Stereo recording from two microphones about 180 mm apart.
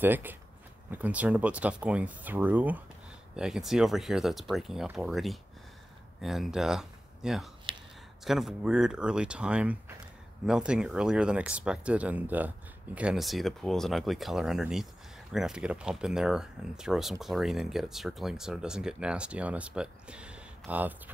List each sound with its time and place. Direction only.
0.0 s speech: 10° right (ahead or behind)
7.7 s a sound: 30° right (ahead or behind)
8.2 s speech: centre (ahead or behind)